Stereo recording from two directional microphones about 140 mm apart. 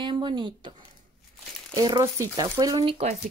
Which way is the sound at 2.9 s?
50° right (ahead or behind).